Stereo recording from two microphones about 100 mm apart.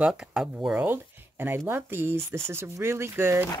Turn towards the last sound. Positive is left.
turn(degrees=-25)  # may be behind; listen again after turning